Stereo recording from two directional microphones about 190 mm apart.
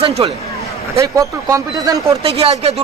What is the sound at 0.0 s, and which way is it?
Speech, 30° right (ahead or behind).